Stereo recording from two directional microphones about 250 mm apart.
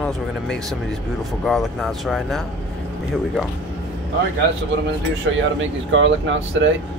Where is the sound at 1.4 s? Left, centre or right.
Centre.